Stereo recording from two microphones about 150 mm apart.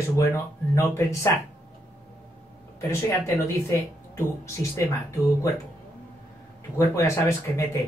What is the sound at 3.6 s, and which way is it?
Speech, 20° left (ahead or behind).